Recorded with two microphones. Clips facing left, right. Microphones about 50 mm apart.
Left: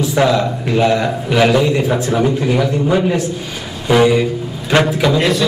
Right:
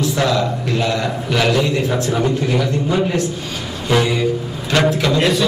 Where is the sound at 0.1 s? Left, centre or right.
Centre.